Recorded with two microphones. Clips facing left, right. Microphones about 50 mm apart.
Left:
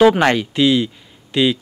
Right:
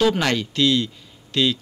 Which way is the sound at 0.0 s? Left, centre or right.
Left.